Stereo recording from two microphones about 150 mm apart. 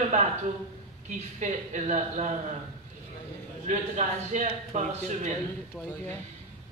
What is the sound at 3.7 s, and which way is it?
A man's voice, 55° right (ahead or behind).